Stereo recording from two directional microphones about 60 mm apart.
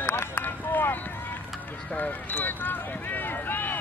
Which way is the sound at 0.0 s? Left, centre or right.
Left.